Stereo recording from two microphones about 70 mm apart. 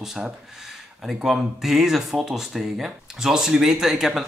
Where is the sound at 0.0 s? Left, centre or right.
Centre.